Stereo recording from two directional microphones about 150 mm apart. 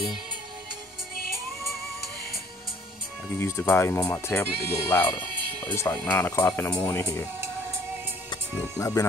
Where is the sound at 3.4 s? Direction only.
15° left (ahead or behind).